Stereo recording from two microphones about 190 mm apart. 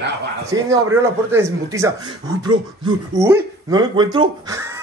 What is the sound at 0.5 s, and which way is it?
Speech, 15° right (ahead or behind).